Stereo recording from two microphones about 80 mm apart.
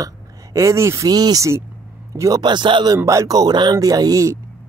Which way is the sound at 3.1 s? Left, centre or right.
Right.